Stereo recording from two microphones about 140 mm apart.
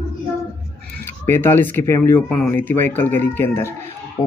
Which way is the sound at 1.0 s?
15° left (ahead or behind).